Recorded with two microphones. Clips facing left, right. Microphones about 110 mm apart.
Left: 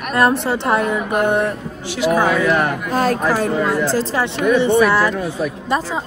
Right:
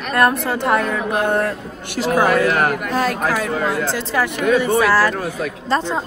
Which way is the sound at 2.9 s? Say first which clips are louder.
Left 2 dB; 40° left (ahead or behind).